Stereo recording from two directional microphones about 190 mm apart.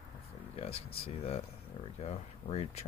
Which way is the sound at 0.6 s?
30° left (ahead or behind).